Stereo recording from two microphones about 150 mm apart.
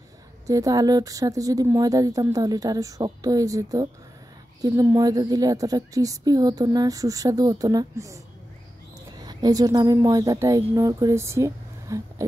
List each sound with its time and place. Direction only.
0.5 s a woman's voice: 25° right (ahead or behind)
9.2 s a woman's voice: 25° right (ahead or behind)